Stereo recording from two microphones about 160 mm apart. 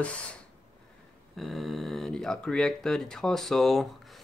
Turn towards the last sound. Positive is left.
turn(degrees=0)  # may be behind; listen again after turning